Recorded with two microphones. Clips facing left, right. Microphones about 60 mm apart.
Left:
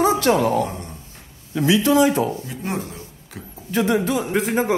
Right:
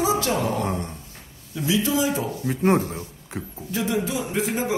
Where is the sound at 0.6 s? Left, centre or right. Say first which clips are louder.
Left 1 dB; right.